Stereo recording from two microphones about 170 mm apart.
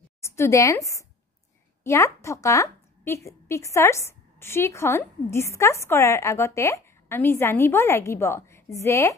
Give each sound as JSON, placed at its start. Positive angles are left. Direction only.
{"t": 0.2, "sound": "a woman's voice", "side_deg": 15}